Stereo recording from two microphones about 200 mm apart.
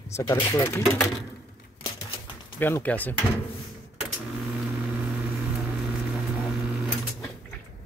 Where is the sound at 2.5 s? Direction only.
10° left (ahead or behind).